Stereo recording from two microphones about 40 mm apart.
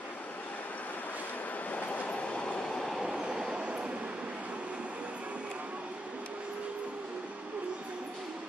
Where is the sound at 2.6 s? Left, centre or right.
Centre.